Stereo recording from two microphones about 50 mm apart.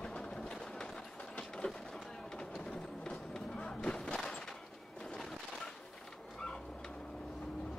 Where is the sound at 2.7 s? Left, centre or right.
Centre.